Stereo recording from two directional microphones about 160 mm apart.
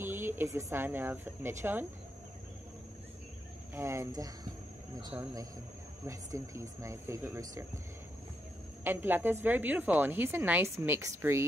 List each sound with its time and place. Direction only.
0.0 s speech: 15° right (ahead or behind)
3.7 s a woman's voice: 15° right (ahead or behind)
8.8 s a woman's voice: 10° right (ahead or behind)